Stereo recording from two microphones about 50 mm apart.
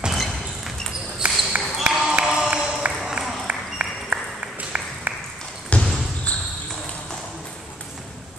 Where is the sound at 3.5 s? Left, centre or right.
Right.